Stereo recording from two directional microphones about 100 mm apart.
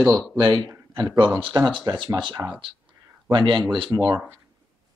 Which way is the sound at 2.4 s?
20° right (ahead or behind).